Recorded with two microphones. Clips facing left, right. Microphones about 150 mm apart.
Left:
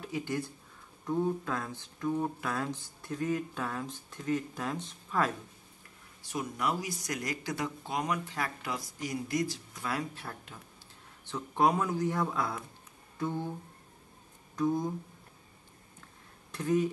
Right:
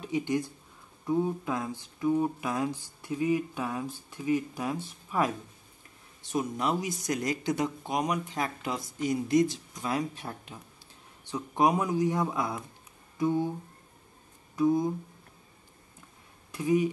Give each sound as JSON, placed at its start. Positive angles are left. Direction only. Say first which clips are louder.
{"t": 0.0, "sound": "speech", "louder": "right 5 dB", "side_deg": -20}
{"t": 6.3, "sound": "speech", "louder": "right 4 dB", "side_deg": -25}
{"t": 14.5, "sound": "speech", "louder": "right 5 dB", "side_deg": -10}
{"t": 16.5, "sound": "speech", "louder": "right 3 dB", "side_deg": -10}